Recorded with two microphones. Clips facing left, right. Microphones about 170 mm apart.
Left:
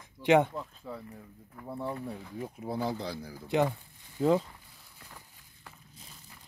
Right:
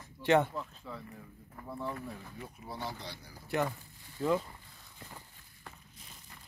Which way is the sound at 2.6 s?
70° left (ahead or behind).